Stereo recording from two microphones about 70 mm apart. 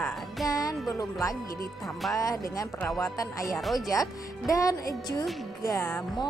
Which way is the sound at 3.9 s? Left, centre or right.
Left.